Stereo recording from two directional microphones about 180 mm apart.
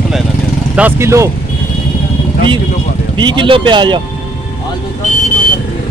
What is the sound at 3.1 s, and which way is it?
Speech, 25° right (ahead or behind).